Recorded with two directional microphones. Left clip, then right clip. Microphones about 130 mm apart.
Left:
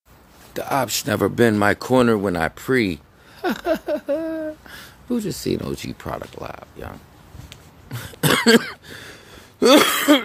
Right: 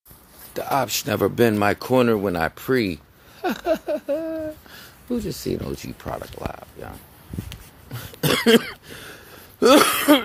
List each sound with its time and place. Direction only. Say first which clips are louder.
0.5 s speech: left 1 dB; 10° left (ahead or behind); by 7.0 s 25° left (ahead or behind)
7.9 s cough: left 3 dB; 20° left (ahead or behind)
8.5 s cough: left 1 dB; 5° left (ahead or behind)
9.3 s throat clearing: left 1 dB; 15° left (ahead or behind)